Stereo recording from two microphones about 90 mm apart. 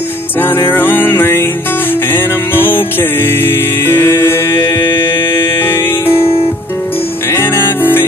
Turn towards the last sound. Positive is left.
turn(degrees=25)  # may be behind; listen again after turning